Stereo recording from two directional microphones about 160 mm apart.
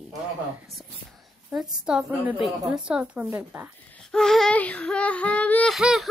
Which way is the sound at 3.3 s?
10° right (ahead or behind).